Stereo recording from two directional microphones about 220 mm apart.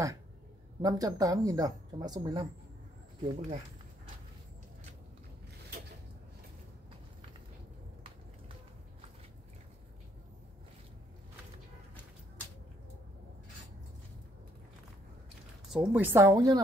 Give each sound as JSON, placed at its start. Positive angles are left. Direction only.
{"t": 0.8, "sound": "speech", "side_deg": -15}
{"t": 15.7, "sound": "speech", "side_deg": -5}